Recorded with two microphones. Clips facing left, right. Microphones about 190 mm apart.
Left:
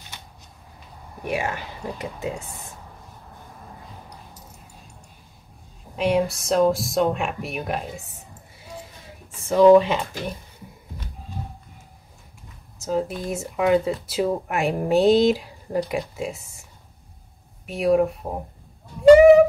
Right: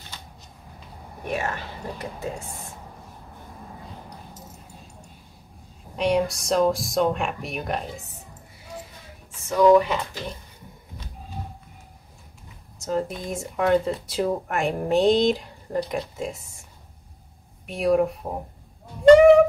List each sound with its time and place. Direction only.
1.2 s speech: 15° left (ahead or behind)
5.9 s speech: 5° left (ahead or behind)
9.5 s speech: 25° left (ahead or behind)
12.7 s speech: 5° left (ahead or behind)
17.6 s speech: centre (ahead or behind)
19.0 s a sound: 5° left (ahead or behind)